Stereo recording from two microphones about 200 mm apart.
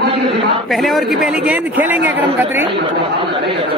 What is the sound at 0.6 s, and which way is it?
A man's voice, centre (ahead or behind).